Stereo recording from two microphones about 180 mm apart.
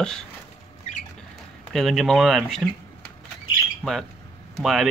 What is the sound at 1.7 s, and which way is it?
Speech, centre (ahead or behind).